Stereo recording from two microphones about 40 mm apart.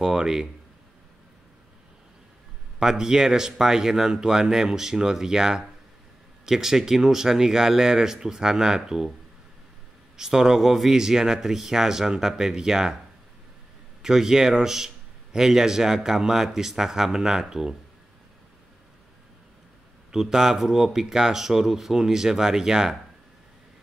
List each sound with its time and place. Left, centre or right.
0.0 s speech: centre
2.8 s speech: centre
10.1 s speech: centre
14.0 s speech: centre
20.1 s speech: centre